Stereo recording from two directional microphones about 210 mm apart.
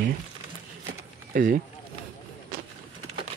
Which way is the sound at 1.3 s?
40° right (ahead or behind).